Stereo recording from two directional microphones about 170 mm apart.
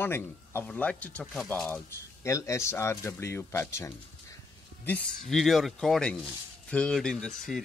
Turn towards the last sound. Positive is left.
turn(degrees=5)  # may be behind; listen again after turning